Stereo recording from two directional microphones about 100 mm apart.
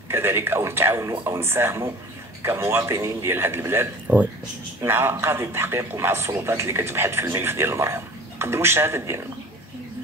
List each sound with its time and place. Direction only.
0.1 s a man's voice: 25° right (ahead or behind)